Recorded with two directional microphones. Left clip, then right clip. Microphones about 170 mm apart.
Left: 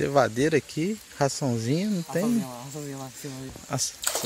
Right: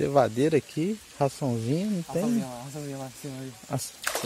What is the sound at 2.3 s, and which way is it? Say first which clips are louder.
Speech: left 1 dB; 20° right (ahead or behind).